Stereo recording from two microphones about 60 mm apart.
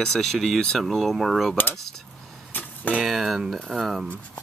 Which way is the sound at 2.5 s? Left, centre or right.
Left.